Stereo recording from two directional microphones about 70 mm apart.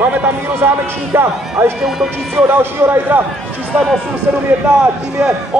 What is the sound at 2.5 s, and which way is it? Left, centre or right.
Speech, right.